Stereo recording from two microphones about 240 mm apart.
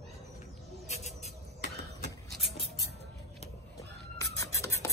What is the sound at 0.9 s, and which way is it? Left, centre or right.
Vehicle, left.